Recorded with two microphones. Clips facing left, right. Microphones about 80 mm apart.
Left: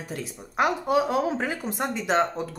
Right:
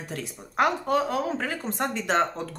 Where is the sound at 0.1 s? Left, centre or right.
Centre.